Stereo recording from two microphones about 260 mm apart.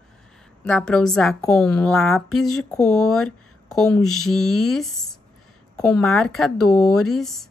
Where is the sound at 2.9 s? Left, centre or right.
Left.